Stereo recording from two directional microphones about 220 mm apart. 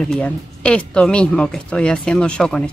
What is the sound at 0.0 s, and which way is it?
Speech, 5° left (ahead or behind).